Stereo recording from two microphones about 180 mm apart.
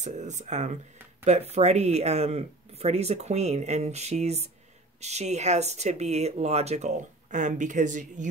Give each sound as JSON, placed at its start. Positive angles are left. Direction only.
{"t": 0.0, "sound": "speech", "side_deg": -40}